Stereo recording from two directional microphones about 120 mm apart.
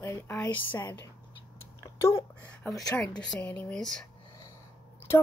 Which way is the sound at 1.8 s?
25° left (ahead or behind).